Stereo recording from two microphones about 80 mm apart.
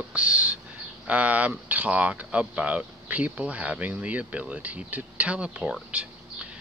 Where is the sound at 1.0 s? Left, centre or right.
Centre.